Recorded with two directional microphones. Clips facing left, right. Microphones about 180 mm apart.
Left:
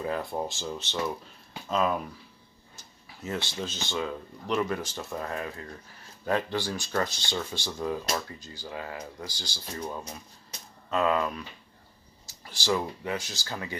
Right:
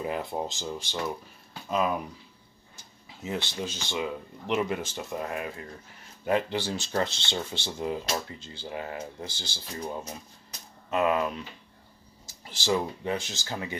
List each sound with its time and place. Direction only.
0.0 s speech: 20° right (ahead or behind)
3.1 s speech: 20° right (ahead or behind)
12.4 s speech: 20° right (ahead or behind)